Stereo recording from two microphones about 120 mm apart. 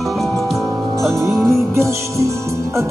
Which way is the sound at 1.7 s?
25° right (ahead or behind).